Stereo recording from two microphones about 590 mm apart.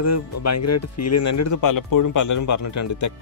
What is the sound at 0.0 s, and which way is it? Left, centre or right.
Speech, left.